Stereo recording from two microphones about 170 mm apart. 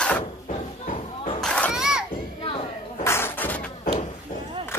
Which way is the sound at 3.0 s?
15° left (ahead or behind).